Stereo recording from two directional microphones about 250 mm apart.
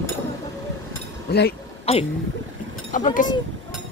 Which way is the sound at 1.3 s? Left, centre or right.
Left.